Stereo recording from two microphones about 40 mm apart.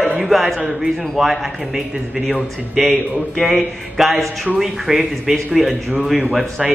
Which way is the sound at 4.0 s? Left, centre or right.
Centre.